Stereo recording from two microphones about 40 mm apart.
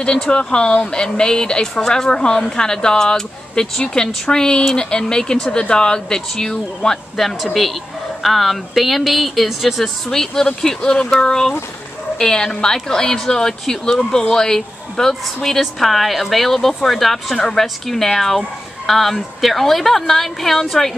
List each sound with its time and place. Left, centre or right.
0.0 s speech: left
8.2 s speech: centre